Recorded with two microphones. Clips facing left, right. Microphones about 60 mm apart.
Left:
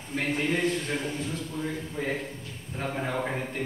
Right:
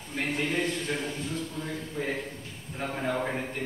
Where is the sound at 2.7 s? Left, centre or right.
Centre.